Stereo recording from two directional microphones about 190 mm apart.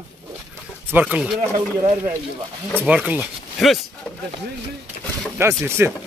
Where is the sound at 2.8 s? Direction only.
5° right (ahead or behind).